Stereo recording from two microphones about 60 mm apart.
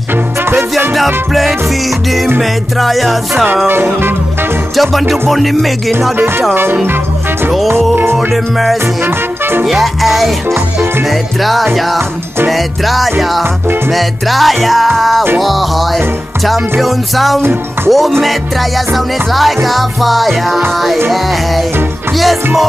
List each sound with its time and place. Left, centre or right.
0.9 s music: centre
2.8 s music: centre
3.6 s music: right
4.7 s music: centre
6.1 s music: right
7.9 s music: right
8.3 s music: centre
9.0 s music: right
9.7 s music: centre